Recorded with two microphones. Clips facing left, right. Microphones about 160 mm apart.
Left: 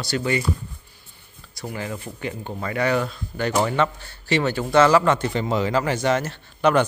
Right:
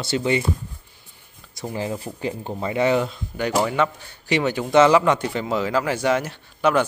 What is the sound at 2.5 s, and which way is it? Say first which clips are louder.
Speech: right 2 dB; 20° right (ahead or behind).